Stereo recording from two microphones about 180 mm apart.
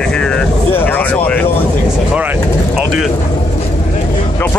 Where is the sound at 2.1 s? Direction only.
10° right (ahead or behind).